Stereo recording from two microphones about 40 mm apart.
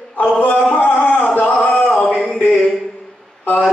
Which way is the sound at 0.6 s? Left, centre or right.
Left.